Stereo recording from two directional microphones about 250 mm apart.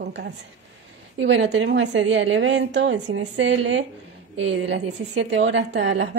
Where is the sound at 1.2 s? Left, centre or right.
Right.